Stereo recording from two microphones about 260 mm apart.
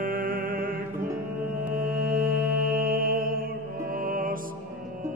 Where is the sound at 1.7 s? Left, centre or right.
Right.